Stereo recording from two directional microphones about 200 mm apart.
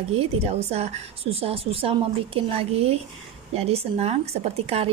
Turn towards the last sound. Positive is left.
turn(degrees=-30)  # may be behind; listen again after turning